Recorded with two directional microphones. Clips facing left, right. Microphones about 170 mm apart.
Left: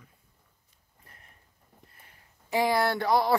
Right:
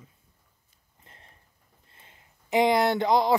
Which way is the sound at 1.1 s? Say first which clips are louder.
Right 2 dB; 30° right (ahead or behind).